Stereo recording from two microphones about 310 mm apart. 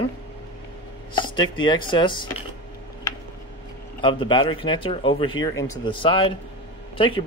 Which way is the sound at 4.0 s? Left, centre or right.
Centre.